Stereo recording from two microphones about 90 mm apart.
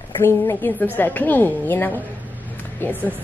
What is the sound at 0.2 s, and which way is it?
A woman's voice, 25° left (ahead or behind).